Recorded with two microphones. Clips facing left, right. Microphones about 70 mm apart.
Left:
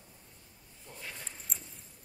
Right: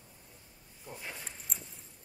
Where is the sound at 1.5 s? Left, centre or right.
Centre.